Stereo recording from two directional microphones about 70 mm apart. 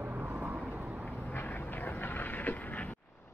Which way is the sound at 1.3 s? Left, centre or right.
Left.